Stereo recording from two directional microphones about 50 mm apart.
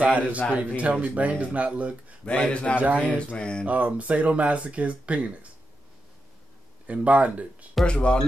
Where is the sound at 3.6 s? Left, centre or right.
Right.